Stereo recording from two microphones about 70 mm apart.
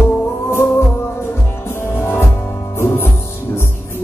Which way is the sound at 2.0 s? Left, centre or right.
Left.